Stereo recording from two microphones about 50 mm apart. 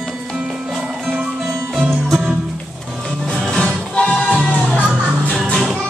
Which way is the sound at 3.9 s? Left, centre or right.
Left.